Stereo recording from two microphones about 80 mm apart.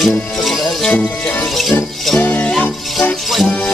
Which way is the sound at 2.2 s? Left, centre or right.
Centre.